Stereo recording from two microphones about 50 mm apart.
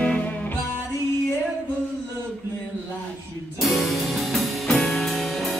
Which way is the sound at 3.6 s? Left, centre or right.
Centre.